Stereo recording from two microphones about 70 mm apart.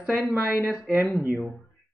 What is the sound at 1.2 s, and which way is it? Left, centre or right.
Speech, centre.